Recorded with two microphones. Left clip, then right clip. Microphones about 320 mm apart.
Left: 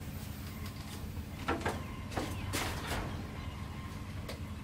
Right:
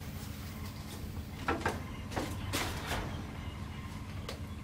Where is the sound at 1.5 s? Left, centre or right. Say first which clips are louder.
Right 1 dB; centre.